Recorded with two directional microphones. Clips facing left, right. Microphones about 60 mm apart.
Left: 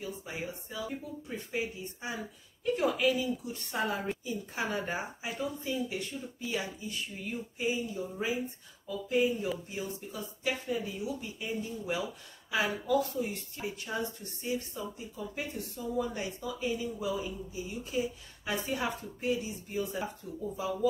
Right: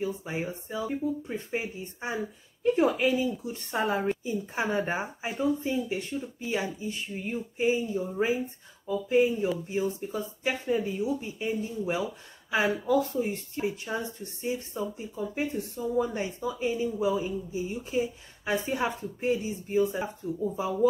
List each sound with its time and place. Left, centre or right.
0.0 s speech: right